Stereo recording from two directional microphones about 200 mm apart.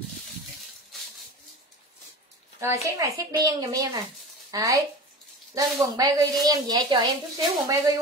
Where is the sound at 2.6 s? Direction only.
15° right (ahead or behind).